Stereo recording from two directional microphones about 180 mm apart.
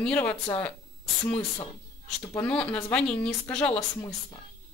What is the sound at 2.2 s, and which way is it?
Speech, 15° left (ahead or behind).